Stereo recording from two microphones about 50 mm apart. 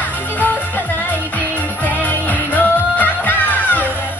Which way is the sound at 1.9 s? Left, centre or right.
Left.